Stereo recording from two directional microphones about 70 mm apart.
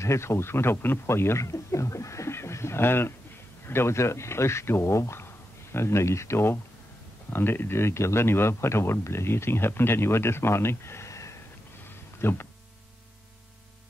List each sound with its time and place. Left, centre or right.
0.0 s speech: left
12.2 s speech: left